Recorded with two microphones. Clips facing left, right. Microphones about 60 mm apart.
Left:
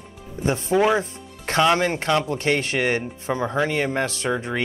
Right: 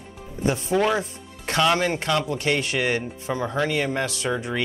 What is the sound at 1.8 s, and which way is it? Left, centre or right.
Speech, left.